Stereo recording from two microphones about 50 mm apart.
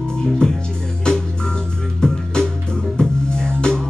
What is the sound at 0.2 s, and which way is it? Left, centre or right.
Music, centre.